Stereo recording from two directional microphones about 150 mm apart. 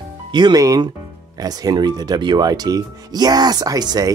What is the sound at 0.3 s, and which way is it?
Speech, 30° right (ahead or behind).